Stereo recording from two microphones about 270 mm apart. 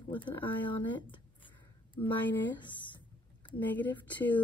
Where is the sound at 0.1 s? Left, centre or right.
Centre.